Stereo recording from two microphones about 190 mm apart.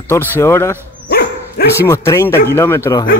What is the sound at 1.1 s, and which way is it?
Dog, 55° left (ahead or behind).